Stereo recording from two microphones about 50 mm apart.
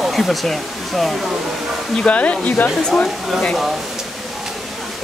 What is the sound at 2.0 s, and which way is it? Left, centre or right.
Speech, left.